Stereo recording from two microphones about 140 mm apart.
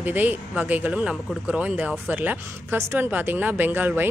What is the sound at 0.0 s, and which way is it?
Speech, 10° right (ahead or behind).